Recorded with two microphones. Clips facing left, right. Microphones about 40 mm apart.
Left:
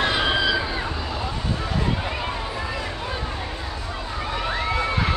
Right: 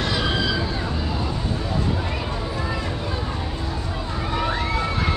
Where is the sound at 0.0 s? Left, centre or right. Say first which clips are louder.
Left 2 dB; left.